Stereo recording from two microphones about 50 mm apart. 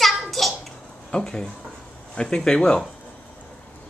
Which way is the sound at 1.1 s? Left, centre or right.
Centre.